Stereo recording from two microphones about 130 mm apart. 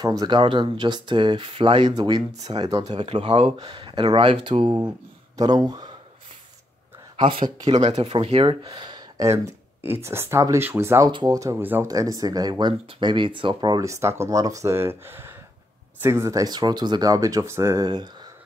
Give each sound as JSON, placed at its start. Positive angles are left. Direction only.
{"t": 0.0, "sound": "speech", "side_deg": -30}
{"t": 3.0, "sound": "speech", "side_deg": -45}
{"t": 5.7, "sound": "speech", "side_deg": -30}
{"t": 7.2, "sound": "speech", "side_deg": -40}
{"t": 7.7, "sound": "speech", "side_deg": -60}
{"t": 9.8, "sound": "speech", "side_deg": -20}
{"t": 11.1, "sound": "speech", "side_deg": -35}
{"t": 17.8, "sound": "speech", "side_deg": -35}